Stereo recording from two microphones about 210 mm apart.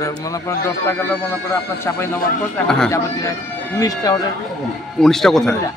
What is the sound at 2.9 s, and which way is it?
Speech, 15° left (ahead or behind).